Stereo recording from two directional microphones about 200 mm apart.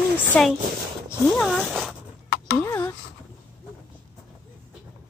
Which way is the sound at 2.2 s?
50° left (ahead or behind).